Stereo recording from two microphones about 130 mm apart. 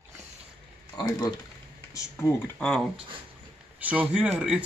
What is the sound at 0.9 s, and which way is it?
Speech, 30° left (ahead or behind).